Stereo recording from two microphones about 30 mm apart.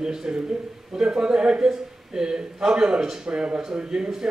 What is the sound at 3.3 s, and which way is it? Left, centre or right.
Speech, right.